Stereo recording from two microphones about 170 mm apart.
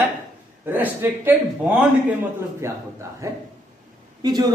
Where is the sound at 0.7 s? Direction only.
10° right (ahead or behind).